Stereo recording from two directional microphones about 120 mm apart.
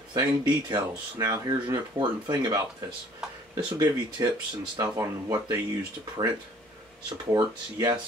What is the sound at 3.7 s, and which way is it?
Speech, 30° right (ahead or behind).